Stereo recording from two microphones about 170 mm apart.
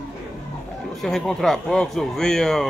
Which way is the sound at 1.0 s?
Centre (ahead or behind).